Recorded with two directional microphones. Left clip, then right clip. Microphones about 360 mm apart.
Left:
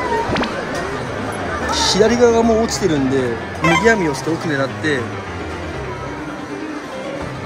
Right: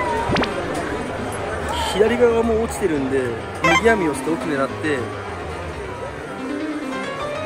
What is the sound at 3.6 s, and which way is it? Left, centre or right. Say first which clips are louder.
Speech: left 2 dB; centre.